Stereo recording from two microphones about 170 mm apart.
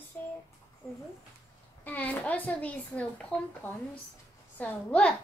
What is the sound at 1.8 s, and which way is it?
A woman's voice, 10° left (ahead or behind).